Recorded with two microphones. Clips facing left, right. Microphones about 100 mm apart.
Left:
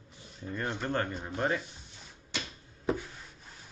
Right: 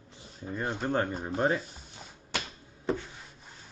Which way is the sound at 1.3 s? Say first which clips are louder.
Right 3 dB; 35° right (ahead or behind).